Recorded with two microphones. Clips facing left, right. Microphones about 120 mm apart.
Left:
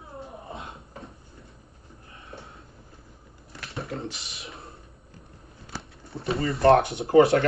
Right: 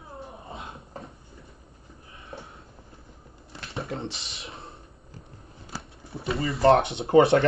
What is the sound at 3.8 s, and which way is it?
Speech, 30° right (ahead or behind).